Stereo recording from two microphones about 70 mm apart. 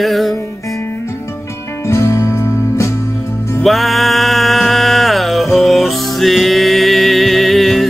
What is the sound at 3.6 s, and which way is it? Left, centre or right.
Music, centre.